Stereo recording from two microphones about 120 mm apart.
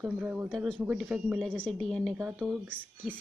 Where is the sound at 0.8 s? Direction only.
10° right (ahead or behind).